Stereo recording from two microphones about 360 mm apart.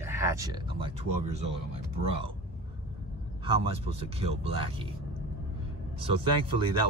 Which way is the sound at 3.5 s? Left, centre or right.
Centre.